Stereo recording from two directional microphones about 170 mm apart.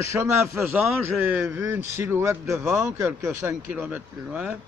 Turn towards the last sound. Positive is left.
turn(degrees=-5)  # may be behind; listen again after turning